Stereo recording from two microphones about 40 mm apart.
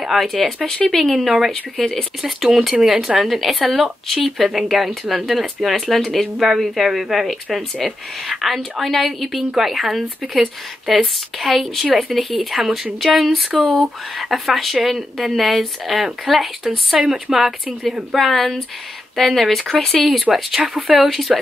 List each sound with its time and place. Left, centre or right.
0.0 s speech: centre
0.3 s speech: centre
1.1 s speech: centre
2.4 s speech: centre
18.1 s speech: centre